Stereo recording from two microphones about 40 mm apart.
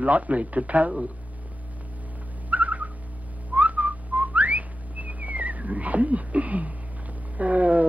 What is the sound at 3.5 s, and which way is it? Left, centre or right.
Whistling, right.